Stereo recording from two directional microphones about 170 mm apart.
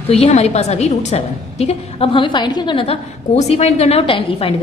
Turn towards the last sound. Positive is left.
turn(degrees=30)  # may be behind; listen again after turning